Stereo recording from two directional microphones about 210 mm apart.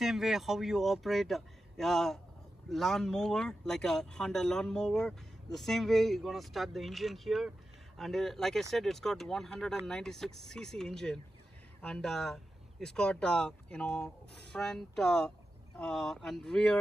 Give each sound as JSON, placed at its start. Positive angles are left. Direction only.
{"t": 0.0, "sound": "speech", "side_deg": 0}